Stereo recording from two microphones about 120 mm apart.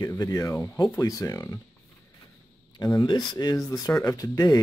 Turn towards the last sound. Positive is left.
turn(degrees=30)  # may be behind; listen again after turning